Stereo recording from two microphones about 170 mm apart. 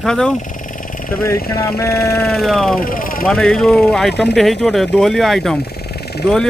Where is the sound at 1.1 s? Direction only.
15° left (ahead or behind).